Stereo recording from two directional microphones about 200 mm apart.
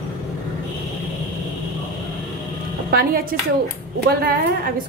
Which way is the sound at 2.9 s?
50° right (ahead or behind).